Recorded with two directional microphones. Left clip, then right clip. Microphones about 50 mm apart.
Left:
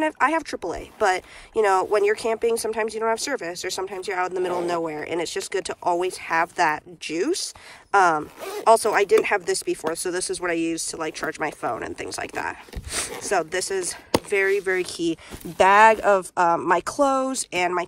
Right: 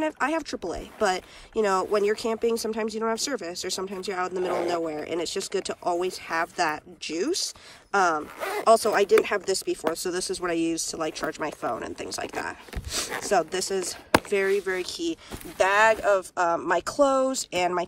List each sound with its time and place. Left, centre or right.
0.0 s speech: right
9.2 s speech: right
13.2 s speech: right
14.7 s speech: centre
16.6 s speech: right